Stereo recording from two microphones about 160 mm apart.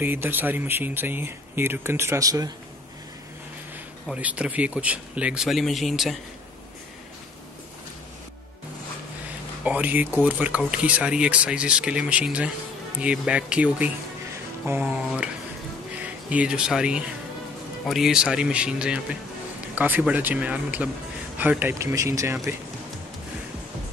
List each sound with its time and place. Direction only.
0.0 s speech: 10° right (ahead or behind)
4.1 s speech: 10° right (ahead or behind)
9.7 s speech: 10° right (ahead or behind)